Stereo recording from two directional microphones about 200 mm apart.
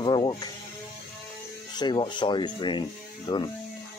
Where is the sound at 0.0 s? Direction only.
20° left (ahead or behind).